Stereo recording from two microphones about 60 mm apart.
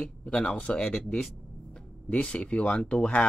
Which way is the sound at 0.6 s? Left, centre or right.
Centre.